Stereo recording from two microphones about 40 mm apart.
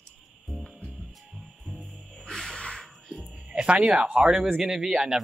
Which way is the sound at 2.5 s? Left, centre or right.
Left.